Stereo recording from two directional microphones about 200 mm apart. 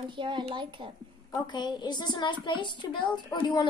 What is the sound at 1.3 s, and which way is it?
A woman's voice, 20° left (ahead or behind).